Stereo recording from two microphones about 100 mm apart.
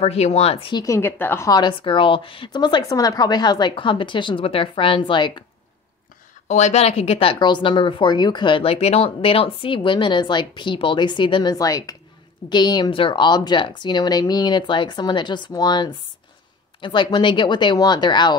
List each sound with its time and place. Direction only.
0.0 s speech: 90° left
0.8 s a woman's voice: 30° left (ahead or behind)
1.5 s speech: 50° left (ahead or behind)
6.7 s speech: 90° left
7.3 s speech: 50° left (ahead or behind)
11.5 s a woman's voice: 35° left (ahead or behind)
12.9 s speech: 60° left (ahead or behind)